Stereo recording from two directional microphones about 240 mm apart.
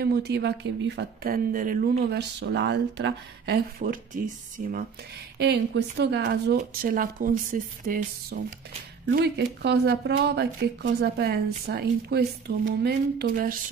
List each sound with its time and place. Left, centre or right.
0.0 s speech: right
5.4 s speech: right